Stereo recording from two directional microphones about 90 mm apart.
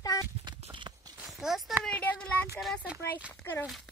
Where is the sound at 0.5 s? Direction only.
60° right (ahead or behind).